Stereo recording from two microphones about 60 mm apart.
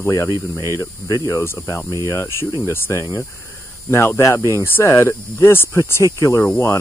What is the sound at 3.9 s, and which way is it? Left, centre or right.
Speech, left.